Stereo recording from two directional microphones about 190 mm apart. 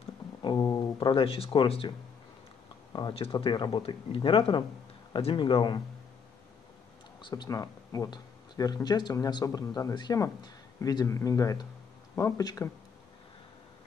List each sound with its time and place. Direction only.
0.4 s speech: 20° left (ahead or behind)
2.9 s speech: 25° left (ahead or behind)
7.2 s speech: 25° left (ahead or behind)